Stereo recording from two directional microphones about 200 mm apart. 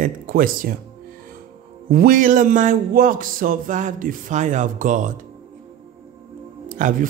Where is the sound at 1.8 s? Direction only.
45° right (ahead or behind).